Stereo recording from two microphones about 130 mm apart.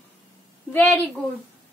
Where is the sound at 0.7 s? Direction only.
10° left (ahead or behind).